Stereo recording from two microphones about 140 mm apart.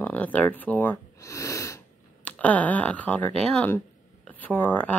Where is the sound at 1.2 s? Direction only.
20° left (ahead or behind).